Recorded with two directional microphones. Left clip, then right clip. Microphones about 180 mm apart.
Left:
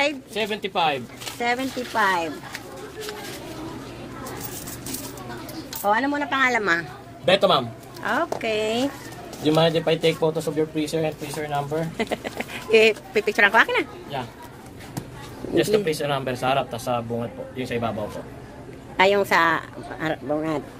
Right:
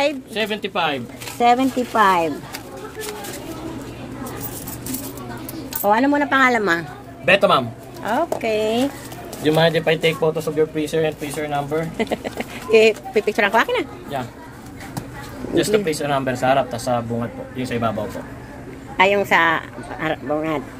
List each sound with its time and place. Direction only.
0.3 s speech: 5° left (ahead or behind)
1.5 s speech: 25° right (ahead or behind)
5.9 s speech: 50° right (ahead or behind)
6.5 s speech: 20° right (ahead or behind)
7.2 s speech: 5° left (ahead or behind)
15.5 s speech: 5° left (ahead or behind); by 17.9 s 15° right (ahead or behind)
19.0 s speech: 15° left (ahead or behind)